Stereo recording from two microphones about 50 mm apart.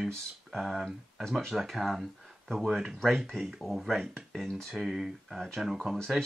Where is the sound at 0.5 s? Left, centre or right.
Centre.